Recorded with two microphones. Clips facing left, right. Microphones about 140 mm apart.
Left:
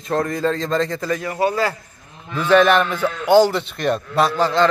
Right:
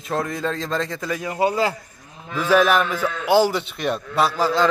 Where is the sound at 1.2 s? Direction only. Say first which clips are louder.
Right 1 dB; 15° right (ahead or behind).